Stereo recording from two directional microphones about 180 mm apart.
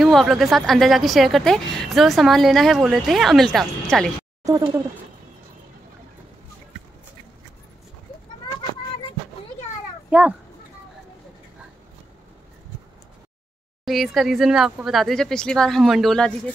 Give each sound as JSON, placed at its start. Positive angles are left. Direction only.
{"t": 0.0, "sound": "a woman's voice", "side_deg": 0}
{"t": 8.5, "sound": "a sound", "side_deg": 25}
{"t": 10.0, "sound": "speech", "side_deg": -10}
{"t": 13.8, "sound": "a woman's voice", "side_deg": 0}